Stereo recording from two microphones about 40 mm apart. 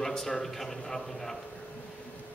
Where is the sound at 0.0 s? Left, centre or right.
Centre.